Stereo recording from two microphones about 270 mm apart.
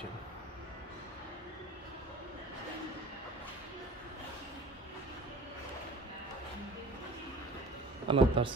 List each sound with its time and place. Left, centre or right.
8.1 s speech: centre